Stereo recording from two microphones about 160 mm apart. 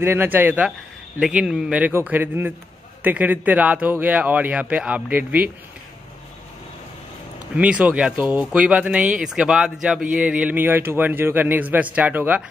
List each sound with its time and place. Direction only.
0.0 s a man's voice: 15° right (ahead or behind)
7.5 s a man's voice: 10° right (ahead or behind)